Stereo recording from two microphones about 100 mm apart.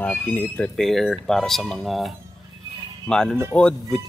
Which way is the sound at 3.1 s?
5° left (ahead or behind).